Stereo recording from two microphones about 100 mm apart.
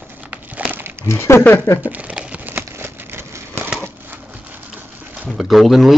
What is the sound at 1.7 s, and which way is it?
Crumpling, 15° right (ahead or behind).